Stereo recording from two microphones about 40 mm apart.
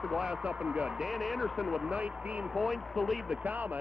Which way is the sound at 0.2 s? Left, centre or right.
Right.